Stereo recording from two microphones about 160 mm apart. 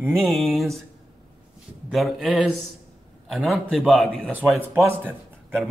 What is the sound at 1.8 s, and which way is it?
A man's voice, centre (ahead or behind).